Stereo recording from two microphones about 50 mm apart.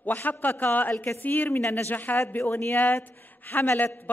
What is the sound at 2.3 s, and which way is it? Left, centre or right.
A man's voice, left.